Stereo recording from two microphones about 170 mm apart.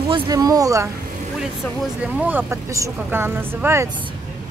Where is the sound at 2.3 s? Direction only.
10° right (ahead or behind).